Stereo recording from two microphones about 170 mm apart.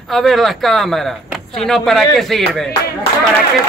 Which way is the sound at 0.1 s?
Centre (ahead or behind).